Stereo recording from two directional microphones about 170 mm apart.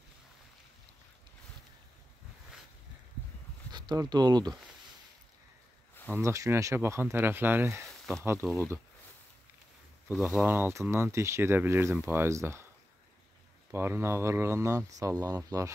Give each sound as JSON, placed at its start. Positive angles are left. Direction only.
{"t": 3.7, "sound": "speech", "side_deg": -20}
{"t": 6.1, "sound": "speech", "side_deg": -15}
{"t": 10.1, "sound": "speech", "side_deg": -10}
{"t": 13.7, "sound": "speech", "side_deg": -15}